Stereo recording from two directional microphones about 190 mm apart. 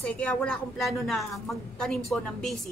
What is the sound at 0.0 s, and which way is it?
A woman's voice, 5° left (ahead or behind).